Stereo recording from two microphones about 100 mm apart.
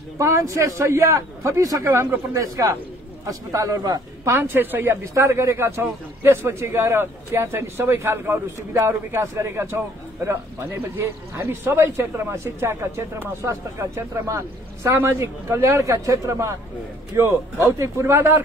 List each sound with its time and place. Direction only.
0.2 s a man's voice: 30° right (ahead or behind)
4.3 s a man's voice: 20° right (ahead or behind)